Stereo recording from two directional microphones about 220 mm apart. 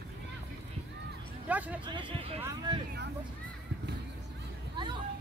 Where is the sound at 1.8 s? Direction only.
20° right (ahead or behind).